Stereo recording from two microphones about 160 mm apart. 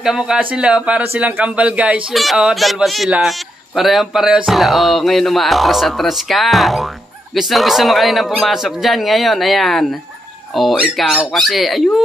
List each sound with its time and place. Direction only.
0.0 s a man's voice: 5° right (ahead or behind)